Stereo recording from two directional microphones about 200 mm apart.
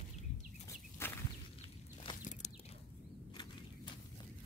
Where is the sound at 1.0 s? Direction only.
10° left (ahead or behind).